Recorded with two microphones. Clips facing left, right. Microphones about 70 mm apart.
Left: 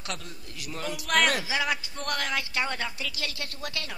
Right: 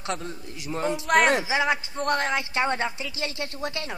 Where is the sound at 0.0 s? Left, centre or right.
Right.